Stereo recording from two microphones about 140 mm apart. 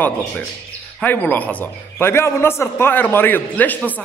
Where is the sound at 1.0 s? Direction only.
10° left (ahead or behind).